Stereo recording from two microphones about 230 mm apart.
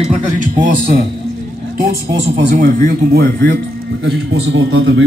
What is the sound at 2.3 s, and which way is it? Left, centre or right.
Speech, right.